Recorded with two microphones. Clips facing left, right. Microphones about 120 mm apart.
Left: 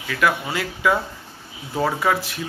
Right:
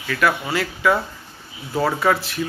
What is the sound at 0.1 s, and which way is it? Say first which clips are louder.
Speech: right 1 dB; 15° left (ahead or behind).